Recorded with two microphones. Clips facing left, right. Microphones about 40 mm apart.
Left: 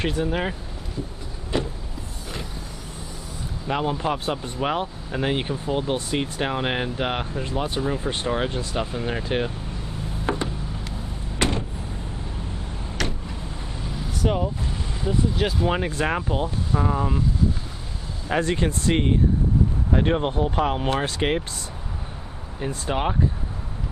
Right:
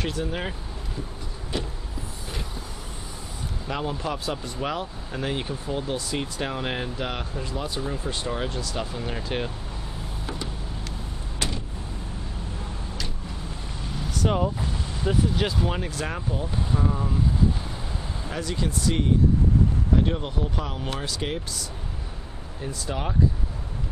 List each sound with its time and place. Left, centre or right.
0.0 s speech: centre
3.6 s speech: left
7.8 s speech: left
10.3 s a sound: left
11.3 s vehicle: left
14.3 s speech: centre
15.3 s speech: centre
15.7 s speech: left
18.3 s speech: left